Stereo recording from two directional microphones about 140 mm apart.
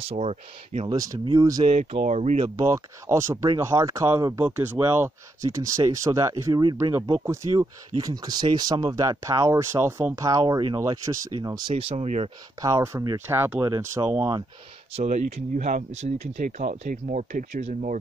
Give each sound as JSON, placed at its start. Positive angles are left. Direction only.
{"t": 0.0, "sound": "speech", "side_deg": -45}
{"t": 0.8, "sound": "speech", "side_deg": -25}
{"t": 1.7, "sound": "speech", "side_deg": -50}
{"t": 2.4, "sound": "speech", "side_deg": -25}
{"t": 11.7, "sound": "speech", "side_deg": -45}
{"t": 12.6, "sound": "speech", "side_deg": -25}
{"t": 15.0, "sound": "speech", "side_deg": -55}